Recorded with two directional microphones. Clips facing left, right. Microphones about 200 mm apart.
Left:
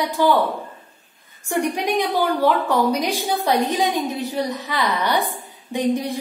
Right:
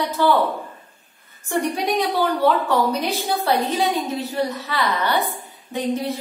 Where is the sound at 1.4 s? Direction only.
15° left (ahead or behind).